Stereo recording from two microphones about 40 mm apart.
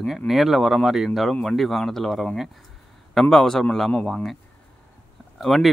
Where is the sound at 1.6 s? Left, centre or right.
Centre.